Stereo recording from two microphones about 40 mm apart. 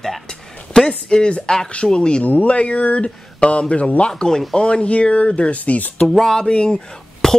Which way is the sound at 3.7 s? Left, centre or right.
Left.